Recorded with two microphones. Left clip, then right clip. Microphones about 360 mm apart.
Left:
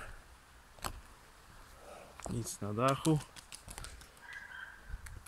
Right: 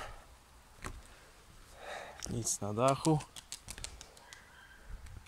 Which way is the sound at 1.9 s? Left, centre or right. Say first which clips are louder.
Right 4 dB; right.